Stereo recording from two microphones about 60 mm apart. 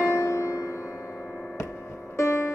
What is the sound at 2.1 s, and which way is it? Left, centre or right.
Music, left.